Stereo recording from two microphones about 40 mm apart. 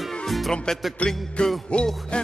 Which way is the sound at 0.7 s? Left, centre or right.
Centre.